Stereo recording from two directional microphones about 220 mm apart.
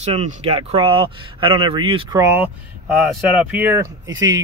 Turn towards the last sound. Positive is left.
turn(degrees=-15)  # may be behind; listen again after turning